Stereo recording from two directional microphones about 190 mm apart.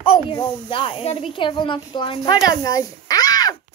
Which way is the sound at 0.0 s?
30° left (ahead or behind).